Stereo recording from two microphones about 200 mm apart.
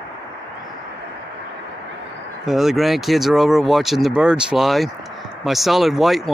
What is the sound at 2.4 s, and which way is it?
Speech, centre (ahead or behind).